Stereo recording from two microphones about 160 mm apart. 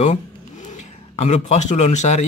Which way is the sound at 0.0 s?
50° left (ahead or behind).